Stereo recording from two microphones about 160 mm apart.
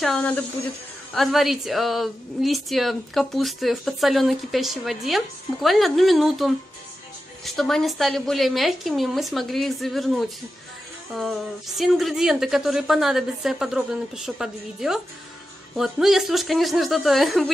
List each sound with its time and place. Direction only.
0.0 s a woman's voice: 5° left (ahead or behind)